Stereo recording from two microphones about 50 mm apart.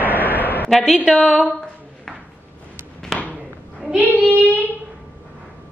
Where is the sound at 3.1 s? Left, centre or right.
Centre.